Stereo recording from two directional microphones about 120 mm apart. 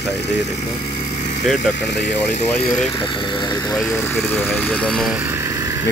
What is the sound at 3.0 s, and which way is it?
Speech, 40° left (ahead or behind).